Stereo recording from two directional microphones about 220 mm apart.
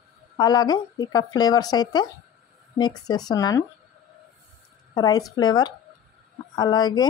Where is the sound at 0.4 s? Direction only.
20° left (ahead or behind).